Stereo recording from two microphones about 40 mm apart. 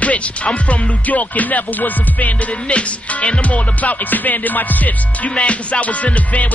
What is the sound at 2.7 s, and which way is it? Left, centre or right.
Music, left.